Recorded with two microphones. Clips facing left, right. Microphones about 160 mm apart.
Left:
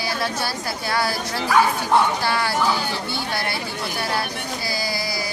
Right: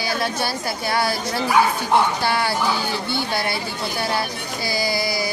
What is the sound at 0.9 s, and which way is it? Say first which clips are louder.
Speech: right 1 dB; 25° right (ahead or behind).